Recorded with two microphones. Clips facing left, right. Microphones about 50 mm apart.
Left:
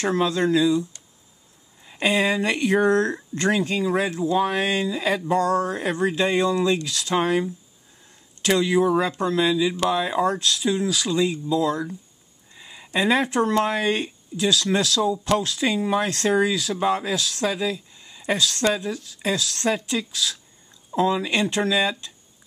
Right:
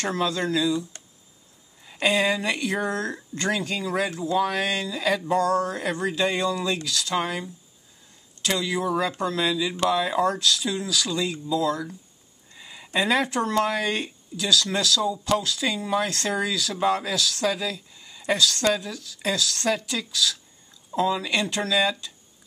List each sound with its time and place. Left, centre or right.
0.0 s speech: centre
1.8 s speech: centre
2.4 s a sound: left
3.1 s speech: centre
8.7 s speech: centre